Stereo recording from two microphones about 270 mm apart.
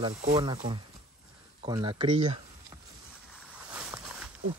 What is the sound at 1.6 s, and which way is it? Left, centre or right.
Speech, centre.